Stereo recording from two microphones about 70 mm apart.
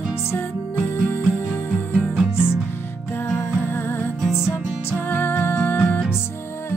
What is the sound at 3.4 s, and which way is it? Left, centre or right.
Music, left.